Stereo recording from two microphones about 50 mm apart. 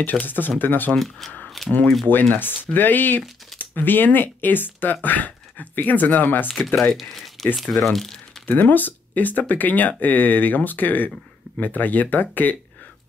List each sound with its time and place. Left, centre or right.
0.0 s speech: left
0.9 s speech: centre
2.3 s speech: left
6.7 s speech: centre
8.5 s speech: left